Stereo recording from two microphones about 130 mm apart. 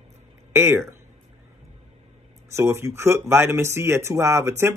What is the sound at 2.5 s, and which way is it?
Speech, 20° right (ahead or behind).